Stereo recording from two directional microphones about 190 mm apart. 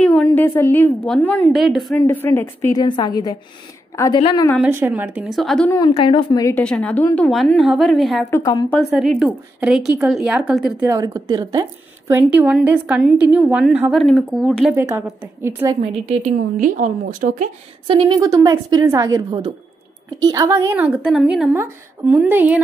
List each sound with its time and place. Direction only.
0.0 s a woman's voice: 10° left (ahead or behind)
2.0 s a woman's voice: 10° left (ahead or behind)
4.6 s a woman's voice: 10° right (ahead or behind)
5.7 s speech: 20° left (ahead or behind)
6.6 s a woman's voice: 5° left (ahead or behind)
10.9 s a woman's voice: 20° right (ahead or behind)
15.8 s a woman's voice: 30° right (ahead or behind)
16.5 s speech: 45° right (ahead or behind)
17.8 s a woman's voice: 25° right (ahead or behind); by 22.6 s 10° right (ahead or behind)